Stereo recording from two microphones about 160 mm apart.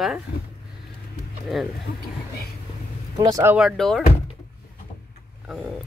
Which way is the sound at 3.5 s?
Centre (ahead or behind).